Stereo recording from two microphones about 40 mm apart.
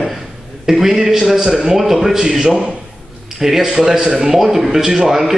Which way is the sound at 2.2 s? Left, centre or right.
Centre.